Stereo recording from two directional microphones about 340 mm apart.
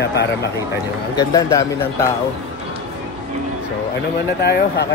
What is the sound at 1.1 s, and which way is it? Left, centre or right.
Speech, centre.